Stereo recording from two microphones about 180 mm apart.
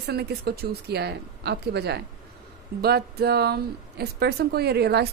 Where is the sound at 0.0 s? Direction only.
60° right (ahead or behind).